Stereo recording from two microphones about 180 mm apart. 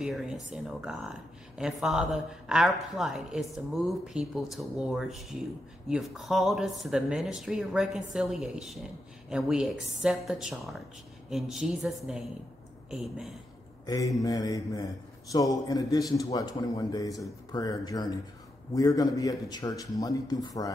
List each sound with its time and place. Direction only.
0.0 s a woman's voice: 5° right (ahead or behind)
13.8 s a man's voice: 20° left (ahead or behind)